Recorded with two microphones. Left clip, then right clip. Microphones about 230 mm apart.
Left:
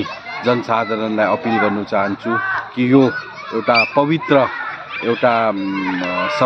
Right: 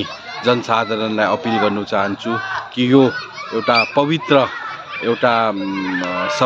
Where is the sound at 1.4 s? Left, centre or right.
Right.